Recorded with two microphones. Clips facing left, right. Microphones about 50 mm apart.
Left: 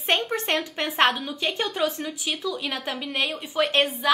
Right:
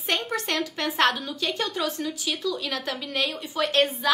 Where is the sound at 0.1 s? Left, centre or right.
Left.